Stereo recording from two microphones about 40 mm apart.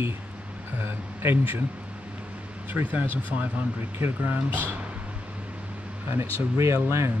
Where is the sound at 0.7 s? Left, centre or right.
Right.